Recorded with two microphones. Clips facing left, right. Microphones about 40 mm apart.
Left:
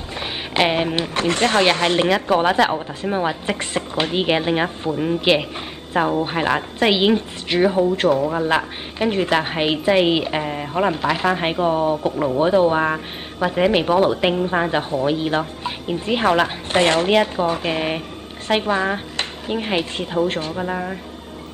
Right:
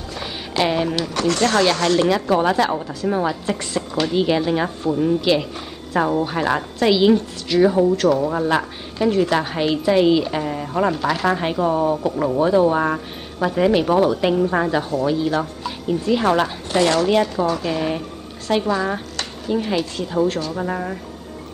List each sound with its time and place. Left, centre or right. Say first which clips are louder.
0.1 s speech: left 2 dB; left
16.3 s a woman's voice: left 3 dB; left
16.7 s speech: left 1 dB; left
20.6 s speech: even; centre